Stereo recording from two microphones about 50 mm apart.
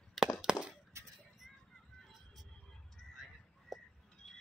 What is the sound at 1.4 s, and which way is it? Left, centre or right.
Music, centre.